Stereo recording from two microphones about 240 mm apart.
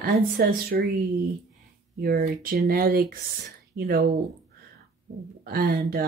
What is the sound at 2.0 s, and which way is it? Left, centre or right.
Speech, right.